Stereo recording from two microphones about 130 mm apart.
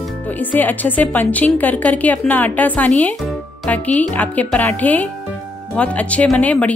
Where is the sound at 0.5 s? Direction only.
15° left (ahead or behind).